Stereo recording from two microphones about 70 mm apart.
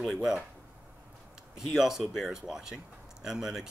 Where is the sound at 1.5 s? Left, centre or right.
Centre.